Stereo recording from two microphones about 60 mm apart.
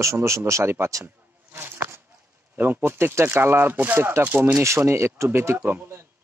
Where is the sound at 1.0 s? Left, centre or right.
Right.